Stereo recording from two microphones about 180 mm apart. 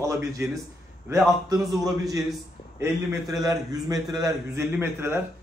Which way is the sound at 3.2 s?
Centre (ahead or behind).